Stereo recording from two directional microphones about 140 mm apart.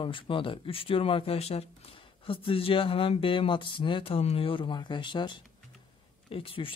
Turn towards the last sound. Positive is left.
turn(degrees=40)  # may be behind; listen again after turning